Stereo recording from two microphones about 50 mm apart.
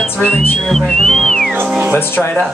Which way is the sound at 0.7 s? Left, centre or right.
Centre.